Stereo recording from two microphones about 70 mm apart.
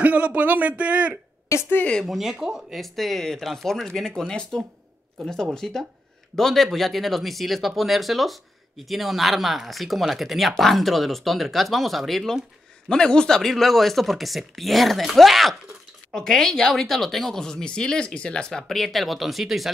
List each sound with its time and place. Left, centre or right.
0.0 s a man's voice: right
1.5 s a woman's voice: left
2.0 s speech: centre